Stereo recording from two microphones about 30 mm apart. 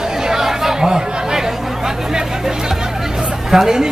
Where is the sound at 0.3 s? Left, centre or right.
Centre.